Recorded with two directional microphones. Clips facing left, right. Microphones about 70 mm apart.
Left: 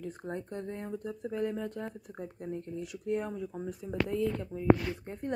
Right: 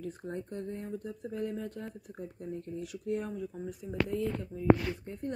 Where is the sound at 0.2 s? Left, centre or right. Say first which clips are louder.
Left 1 dB; left.